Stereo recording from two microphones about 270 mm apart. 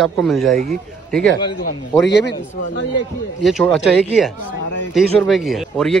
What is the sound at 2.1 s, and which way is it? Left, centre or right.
Speech, left.